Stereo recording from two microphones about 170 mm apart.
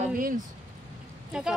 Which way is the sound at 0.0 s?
50° right (ahead or behind).